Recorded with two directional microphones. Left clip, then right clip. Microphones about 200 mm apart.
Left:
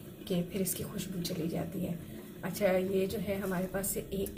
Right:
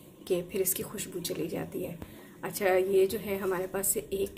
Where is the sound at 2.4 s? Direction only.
50° right (ahead or behind).